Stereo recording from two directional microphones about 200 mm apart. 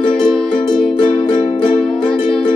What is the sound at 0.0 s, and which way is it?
Music, 25° left (ahead or behind).